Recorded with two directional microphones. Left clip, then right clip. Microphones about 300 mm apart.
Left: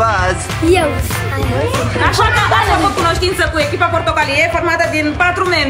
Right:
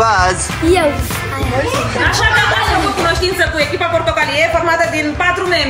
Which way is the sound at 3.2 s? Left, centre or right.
Centre.